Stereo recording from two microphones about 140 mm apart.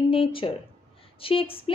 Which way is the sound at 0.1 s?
40° left (ahead or behind).